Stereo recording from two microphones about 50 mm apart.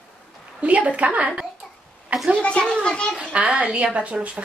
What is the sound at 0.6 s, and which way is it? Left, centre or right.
Speech, right.